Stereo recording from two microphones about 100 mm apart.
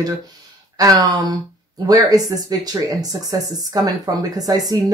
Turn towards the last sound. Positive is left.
turn(degrees=-40)  # may be behind; listen again after turning